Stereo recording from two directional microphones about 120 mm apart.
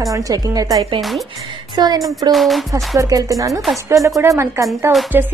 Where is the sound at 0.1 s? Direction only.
30° right (ahead or behind).